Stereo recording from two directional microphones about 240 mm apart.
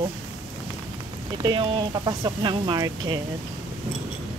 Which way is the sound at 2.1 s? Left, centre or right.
Centre.